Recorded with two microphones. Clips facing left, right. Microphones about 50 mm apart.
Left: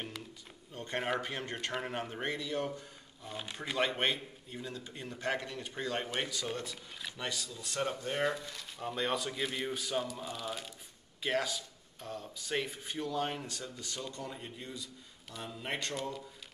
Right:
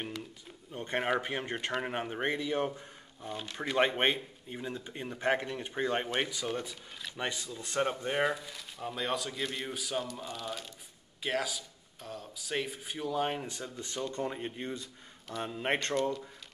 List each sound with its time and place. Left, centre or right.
0.7 s speech: centre
7.2 s speech: right
8.3 s speech: centre; by 16.0 s right